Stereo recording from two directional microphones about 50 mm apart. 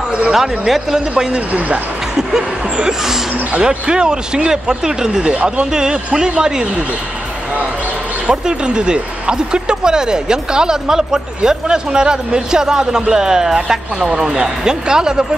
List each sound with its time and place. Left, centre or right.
0.3 s speech: centre
1.1 s speech: right
2.1 s speech: centre
5.3 s speech: right
5.7 s speech: centre
8.3 s speech: centre